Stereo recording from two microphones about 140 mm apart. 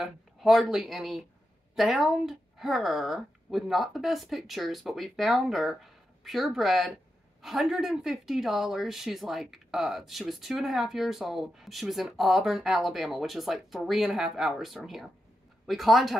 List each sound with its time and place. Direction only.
0.0 s speech: centre (ahead or behind)